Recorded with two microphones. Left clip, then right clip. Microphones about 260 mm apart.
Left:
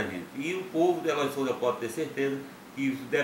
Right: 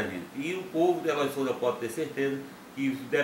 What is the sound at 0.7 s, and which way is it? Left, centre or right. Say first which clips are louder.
Speech: even; right.